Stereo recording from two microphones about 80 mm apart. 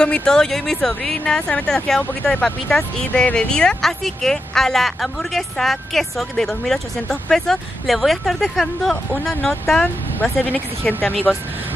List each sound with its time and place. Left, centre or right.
0.0 s a woman's voice: centre
10.2 s speech: left